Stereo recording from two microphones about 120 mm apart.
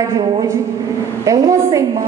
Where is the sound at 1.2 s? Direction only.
30° right (ahead or behind).